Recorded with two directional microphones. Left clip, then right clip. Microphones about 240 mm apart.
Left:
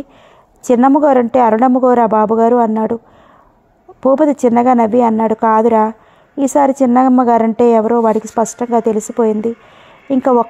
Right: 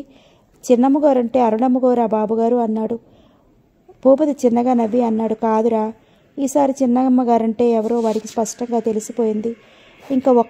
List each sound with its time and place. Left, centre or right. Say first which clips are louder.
0.7 s a woman's voice: left 4 dB; left
4.0 s a woman's voice: left 3 dB; left
10.1 s a woman's voice: left 3 dB; left